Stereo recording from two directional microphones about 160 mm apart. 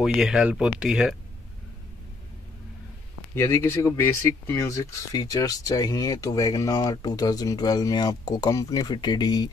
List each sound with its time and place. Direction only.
0.0 s speech: centre (ahead or behind)
3.3 s speech: 15° left (ahead or behind)